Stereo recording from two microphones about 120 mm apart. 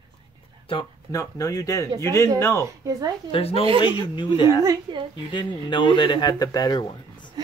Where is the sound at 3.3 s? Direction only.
55° left (ahead or behind).